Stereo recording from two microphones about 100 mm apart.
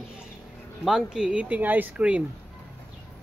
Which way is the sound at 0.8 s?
5° right (ahead or behind).